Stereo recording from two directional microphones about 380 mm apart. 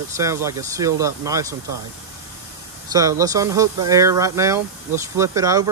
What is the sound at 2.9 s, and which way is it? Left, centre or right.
Speech, centre.